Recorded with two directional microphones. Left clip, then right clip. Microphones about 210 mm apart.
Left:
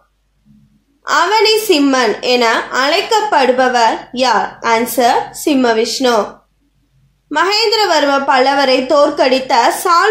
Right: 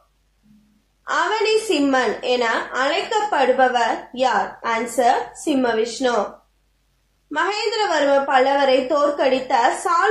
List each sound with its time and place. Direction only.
1.0 s a woman's voice: 45° left (ahead or behind)
7.2 s a woman's voice: 45° left (ahead or behind)